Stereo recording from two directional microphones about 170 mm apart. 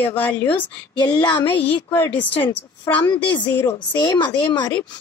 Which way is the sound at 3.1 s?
30° left (ahead or behind).